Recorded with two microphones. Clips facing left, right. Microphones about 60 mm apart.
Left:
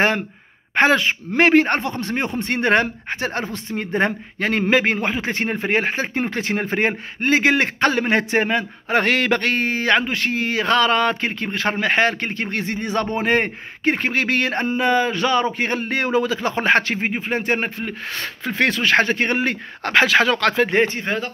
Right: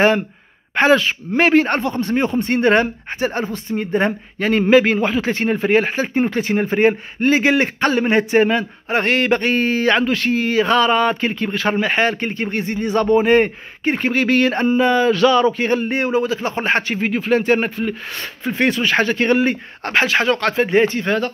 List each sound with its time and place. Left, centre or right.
0.7 s a man's voice: left
8.3 s a man's voice: left
8.9 s a man's voice: left
11.8 s speech: left
13.2 s a man's voice: left
15.5 s a man's voice: left
15.9 s speech: left
17.3 s speech: left
18.5 s a man's voice: left
19.4 s speech: left
21.0 s speech: centre